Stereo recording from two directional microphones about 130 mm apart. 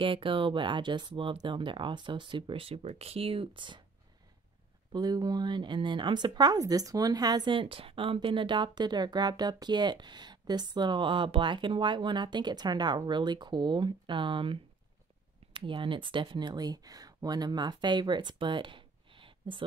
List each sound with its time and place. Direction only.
0.0 s speech: 40° right (ahead or behind)
4.9 s speech: 30° right (ahead or behind)